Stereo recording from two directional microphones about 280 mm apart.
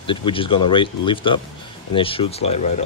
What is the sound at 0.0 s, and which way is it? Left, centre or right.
Speech, centre.